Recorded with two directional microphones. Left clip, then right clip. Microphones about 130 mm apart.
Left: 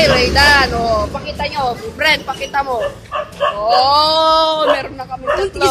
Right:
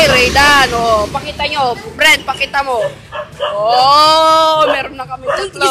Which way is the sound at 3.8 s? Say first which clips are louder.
Right 6 dB; 25° right (ahead or behind).